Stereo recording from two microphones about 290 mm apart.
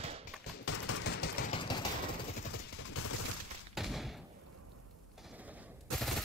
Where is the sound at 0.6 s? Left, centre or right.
Left.